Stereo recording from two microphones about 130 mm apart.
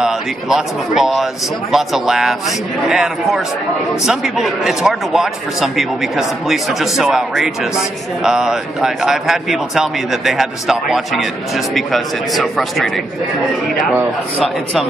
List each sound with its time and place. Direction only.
0.0 s a man's voice: 5° right (ahead or behind)
14.4 s a man's voice: centre (ahead or behind)